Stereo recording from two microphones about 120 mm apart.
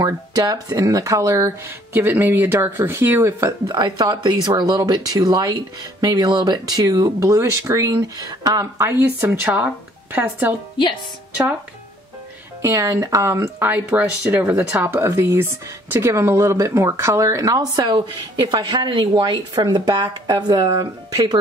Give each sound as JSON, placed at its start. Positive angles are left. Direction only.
{"t": 0.0, "sound": "speech", "side_deg": -30}
{"t": 3.7, "sound": "speech", "side_deg": -35}
{"t": 12.6, "sound": "speech", "side_deg": -25}